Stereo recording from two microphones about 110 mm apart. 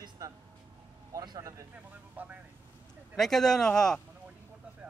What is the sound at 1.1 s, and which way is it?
Vehicle, 40° right (ahead or behind).